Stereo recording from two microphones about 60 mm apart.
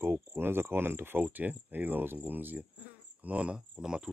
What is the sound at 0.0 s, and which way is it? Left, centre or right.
Speech, right.